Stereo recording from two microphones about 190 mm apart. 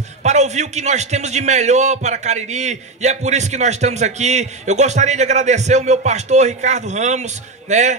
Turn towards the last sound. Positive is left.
turn(degrees=-40)  # may be behind; listen again after turning